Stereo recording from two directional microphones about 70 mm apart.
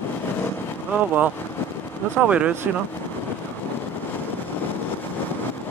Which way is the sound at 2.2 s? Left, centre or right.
Centre.